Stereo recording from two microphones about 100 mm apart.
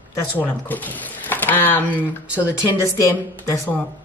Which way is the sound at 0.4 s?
15° left (ahead or behind).